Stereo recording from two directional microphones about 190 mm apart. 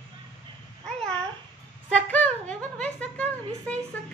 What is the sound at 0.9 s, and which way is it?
Babbling, 5° left (ahead or behind).